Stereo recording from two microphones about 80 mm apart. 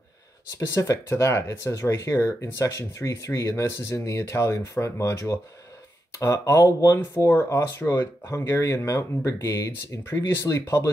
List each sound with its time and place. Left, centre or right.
0.6 s speech: left